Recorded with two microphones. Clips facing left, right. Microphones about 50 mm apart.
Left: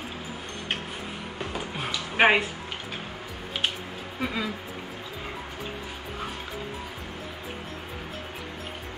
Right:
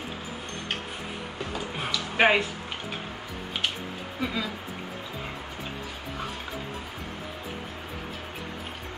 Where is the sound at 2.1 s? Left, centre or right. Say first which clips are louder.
Left 1 dB; centre.